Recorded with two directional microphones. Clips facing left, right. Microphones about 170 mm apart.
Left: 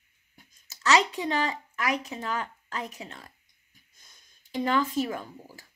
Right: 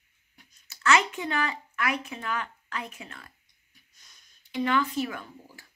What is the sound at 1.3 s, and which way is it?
Speech, 35° left (ahead or behind).